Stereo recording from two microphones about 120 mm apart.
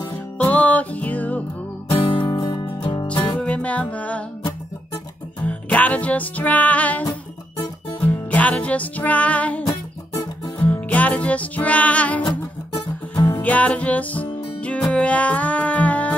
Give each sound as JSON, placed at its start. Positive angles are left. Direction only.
{"t": 0.4, "sound": "music", "side_deg": 10}
{"t": 1.9, "sound": "music", "side_deg": 45}
{"t": 2.2, "sound": "music", "side_deg": 35}
{"t": 3.2, "sound": "music", "side_deg": 10}
{"t": 5.5, "sound": "music", "side_deg": 10}